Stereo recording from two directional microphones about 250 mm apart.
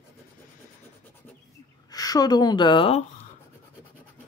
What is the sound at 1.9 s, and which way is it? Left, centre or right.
A woman's voice, centre.